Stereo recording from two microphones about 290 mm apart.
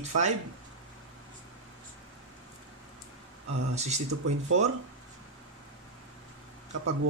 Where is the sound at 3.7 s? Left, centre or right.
Right.